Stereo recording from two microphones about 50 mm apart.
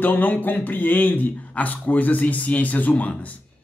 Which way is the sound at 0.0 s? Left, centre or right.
Left.